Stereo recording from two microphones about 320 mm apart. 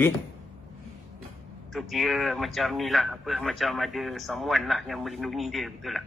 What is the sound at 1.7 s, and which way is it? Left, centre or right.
A man's voice, centre.